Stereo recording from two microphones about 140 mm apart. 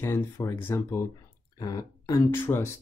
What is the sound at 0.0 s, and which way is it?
Speech, 20° left (ahead or behind).